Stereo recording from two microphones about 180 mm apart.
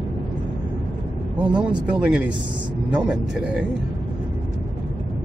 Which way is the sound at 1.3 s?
5° right (ahead or behind).